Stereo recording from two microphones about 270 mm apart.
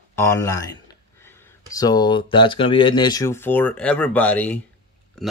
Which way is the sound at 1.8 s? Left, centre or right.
Centre.